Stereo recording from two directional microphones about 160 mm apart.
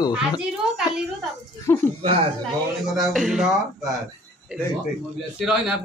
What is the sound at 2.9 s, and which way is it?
Speech, centre (ahead or behind).